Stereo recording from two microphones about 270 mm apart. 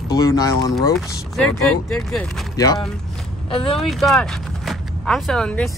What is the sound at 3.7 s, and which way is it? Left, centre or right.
Speech, centre.